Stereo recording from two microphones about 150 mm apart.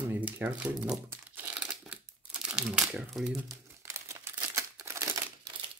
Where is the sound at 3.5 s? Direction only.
20° right (ahead or behind).